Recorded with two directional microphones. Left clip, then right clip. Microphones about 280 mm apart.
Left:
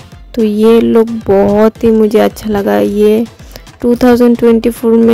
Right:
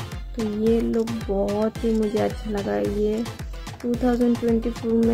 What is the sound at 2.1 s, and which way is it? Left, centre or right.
Speech, left.